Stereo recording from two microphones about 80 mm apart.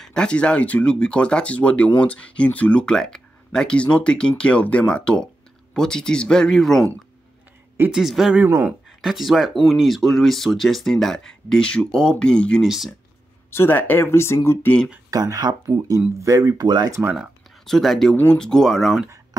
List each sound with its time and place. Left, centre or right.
0.0 s speech: centre
7.9 s speech: centre
12.6 s speech: centre
13.5 s speech: left
15.0 s speech: right
17.6 s speech: centre